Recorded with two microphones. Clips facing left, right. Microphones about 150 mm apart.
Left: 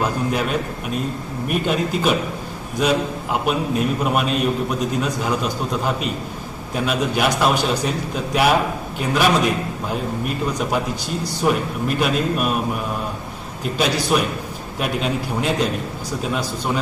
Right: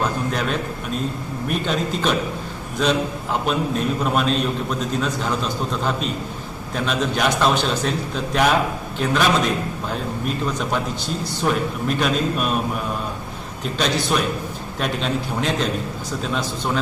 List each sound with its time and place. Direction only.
0.0 s a man's voice: 10° left (ahead or behind)
13.7 s a man's voice: 10° left (ahead or behind)